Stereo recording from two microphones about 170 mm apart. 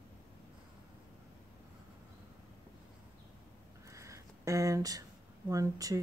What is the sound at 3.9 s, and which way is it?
Speech, 20° right (ahead or behind).